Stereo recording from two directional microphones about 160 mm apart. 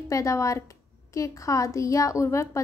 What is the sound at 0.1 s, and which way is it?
A woman's voice, 20° left (ahead or behind).